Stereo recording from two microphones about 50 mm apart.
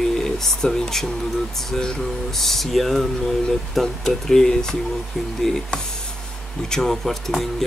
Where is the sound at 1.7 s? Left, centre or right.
Centre.